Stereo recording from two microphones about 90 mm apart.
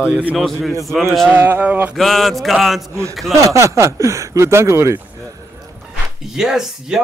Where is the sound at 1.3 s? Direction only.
20° right (ahead or behind).